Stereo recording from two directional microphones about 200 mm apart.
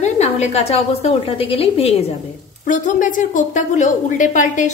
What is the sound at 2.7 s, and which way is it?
A woman's voice, 40° left (ahead or behind).